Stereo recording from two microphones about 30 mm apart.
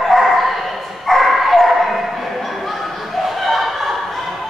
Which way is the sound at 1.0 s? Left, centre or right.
Centre.